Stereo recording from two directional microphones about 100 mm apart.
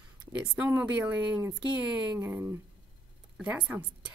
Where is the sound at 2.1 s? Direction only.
25° right (ahead or behind).